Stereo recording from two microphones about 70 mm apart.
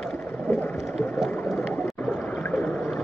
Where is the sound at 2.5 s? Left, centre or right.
Centre.